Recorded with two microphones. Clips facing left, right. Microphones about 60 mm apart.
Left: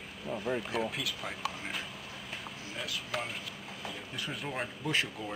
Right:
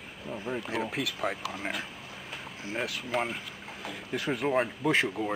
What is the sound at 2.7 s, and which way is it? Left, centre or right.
Speech, right.